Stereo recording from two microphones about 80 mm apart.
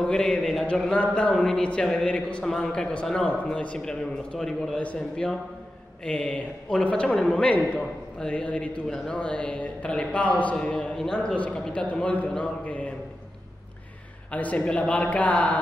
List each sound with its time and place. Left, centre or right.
0.0 s a man's voice: centre
14.3 s a man's voice: centre